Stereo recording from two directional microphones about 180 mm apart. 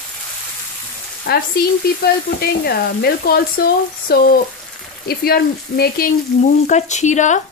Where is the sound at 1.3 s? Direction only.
60° left (ahead or behind).